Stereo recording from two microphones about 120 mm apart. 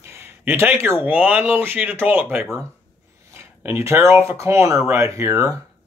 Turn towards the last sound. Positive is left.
turn(degrees=-25)  # may be behind; listen again after turning